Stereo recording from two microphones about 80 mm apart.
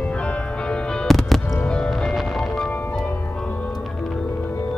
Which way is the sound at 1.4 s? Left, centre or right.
Left.